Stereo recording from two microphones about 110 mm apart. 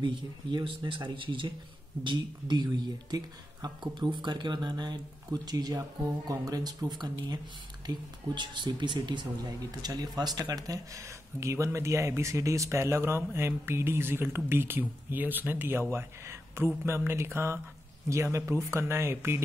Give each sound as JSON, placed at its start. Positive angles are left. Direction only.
{"t": 0.0, "sound": "speech", "side_deg": -45}